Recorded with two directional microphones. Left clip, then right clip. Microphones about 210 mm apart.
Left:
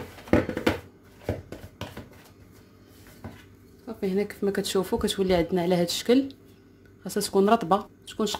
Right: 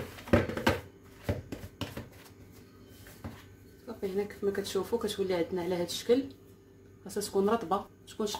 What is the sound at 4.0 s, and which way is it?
Speech, 50° left (ahead or behind).